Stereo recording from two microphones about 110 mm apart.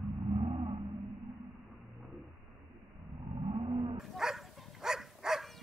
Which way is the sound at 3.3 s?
55° right (ahead or behind).